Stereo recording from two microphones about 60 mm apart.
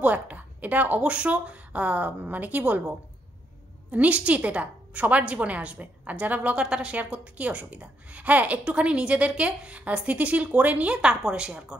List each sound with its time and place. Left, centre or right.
0.0 s a woman's voice: right
3.9 s a woman's voice: right